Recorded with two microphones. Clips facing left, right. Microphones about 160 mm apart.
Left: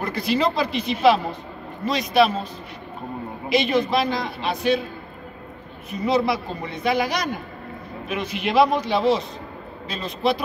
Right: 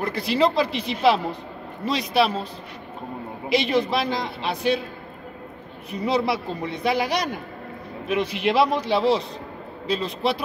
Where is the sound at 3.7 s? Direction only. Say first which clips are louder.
Left 1 dB; 30° right (ahead or behind).